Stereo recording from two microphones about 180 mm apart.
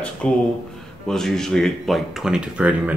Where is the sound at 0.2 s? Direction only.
5° left (ahead or behind).